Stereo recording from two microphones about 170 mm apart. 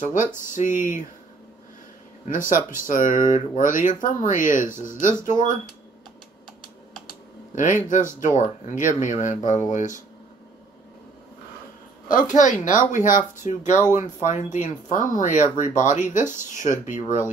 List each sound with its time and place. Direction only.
0.5 s speech: 50° left (ahead or behind)
2.2 s speech: 50° left (ahead or behind)
7.5 s speech: 50° left (ahead or behind)
12.1 s speech: 50° left (ahead or behind)